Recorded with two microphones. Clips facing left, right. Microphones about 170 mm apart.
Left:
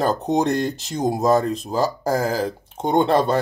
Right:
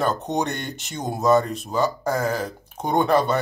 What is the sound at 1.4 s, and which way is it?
Speech, 35° left (ahead or behind).